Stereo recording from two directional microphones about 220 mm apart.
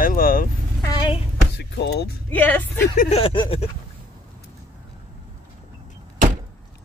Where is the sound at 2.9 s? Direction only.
30° left (ahead or behind).